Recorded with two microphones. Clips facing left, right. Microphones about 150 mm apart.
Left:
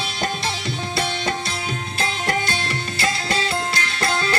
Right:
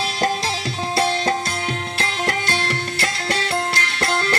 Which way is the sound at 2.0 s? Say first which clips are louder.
Left 1 dB; 75° right (ahead or behind).